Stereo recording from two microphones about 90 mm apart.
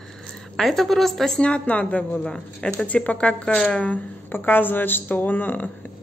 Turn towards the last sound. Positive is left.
turn(degrees=20)  # may be behind; listen again after turning